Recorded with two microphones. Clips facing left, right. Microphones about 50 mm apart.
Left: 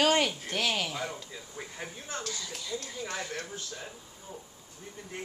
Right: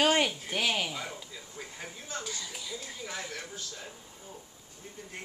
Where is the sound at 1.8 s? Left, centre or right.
Left.